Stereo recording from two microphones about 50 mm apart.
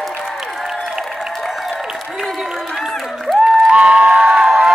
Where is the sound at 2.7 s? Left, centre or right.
Centre.